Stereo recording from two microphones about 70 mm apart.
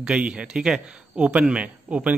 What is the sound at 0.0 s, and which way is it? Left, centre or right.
A man's voice, centre.